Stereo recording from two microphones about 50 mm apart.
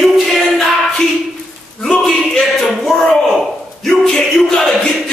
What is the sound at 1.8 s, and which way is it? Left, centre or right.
Speech, centre.